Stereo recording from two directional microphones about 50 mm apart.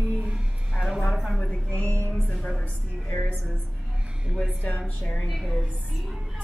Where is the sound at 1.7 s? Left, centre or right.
Left.